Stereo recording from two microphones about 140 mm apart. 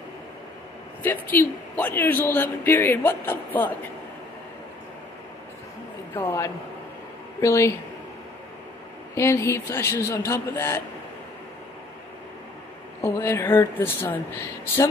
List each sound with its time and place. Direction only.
1.0 s a man's voice: 15° left (ahead or behind)
6.1 s a man's voice: 20° left (ahead or behind)
9.1 s a man's voice: 20° left (ahead or behind)
13.0 s a man's voice: 15° left (ahead or behind)